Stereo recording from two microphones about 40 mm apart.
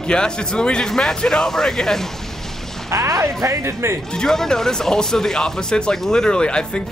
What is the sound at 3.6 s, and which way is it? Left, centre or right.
Speech, right.